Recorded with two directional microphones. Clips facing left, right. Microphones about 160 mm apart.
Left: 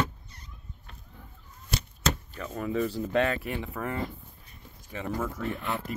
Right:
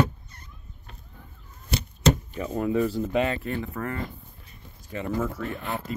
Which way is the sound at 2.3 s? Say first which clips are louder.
Right 7 dB; 15° right (ahead or behind).